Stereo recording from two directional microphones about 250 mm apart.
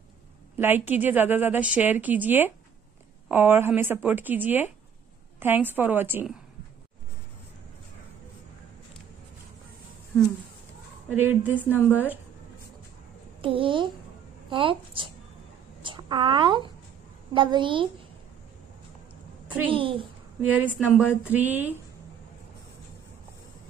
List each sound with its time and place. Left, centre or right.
0.6 s a woman's voice: centre
11.1 s a woman's voice: centre
13.4 s speech: right
19.7 s speech: right
20.4 s a woman's voice: centre